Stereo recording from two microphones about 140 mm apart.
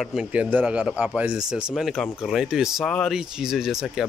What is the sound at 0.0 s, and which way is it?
Speech, 5° right (ahead or behind).